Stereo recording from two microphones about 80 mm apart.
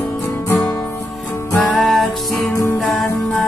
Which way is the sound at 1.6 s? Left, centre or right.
Centre.